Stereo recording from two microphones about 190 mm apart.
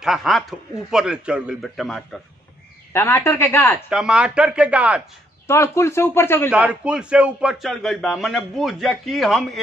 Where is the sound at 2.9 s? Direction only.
15° left (ahead or behind).